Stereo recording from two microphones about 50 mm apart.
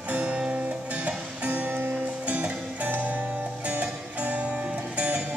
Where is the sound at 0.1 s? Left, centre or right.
Right.